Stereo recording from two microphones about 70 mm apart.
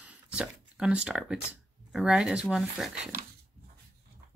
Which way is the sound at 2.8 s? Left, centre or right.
Centre.